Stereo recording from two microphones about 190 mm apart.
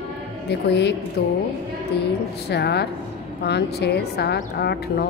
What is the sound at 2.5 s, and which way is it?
A woman's voice, 60° left (ahead or behind).